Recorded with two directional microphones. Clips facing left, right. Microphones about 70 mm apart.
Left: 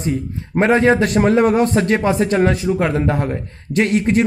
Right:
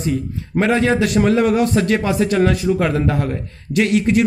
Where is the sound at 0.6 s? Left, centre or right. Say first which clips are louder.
Left 2 dB; left.